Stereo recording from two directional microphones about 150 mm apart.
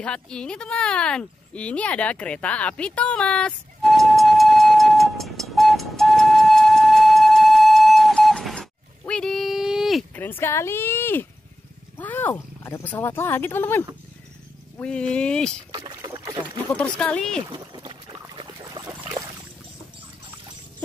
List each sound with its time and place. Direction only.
0.0 s a sound: 5° left (ahead or behind)
10.1 s speech: 15° left (ahead or behind)
15.9 s rowboat: 25° right (ahead or behind)
16.7 s speech: 5° left (ahead or behind)
17.5 s boat: 30° right (ahead or behind)
18.3 s a sound: 30° right (ahead or behind)